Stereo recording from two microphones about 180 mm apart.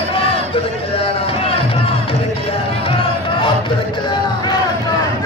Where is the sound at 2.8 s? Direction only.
30° left (ahead or behind).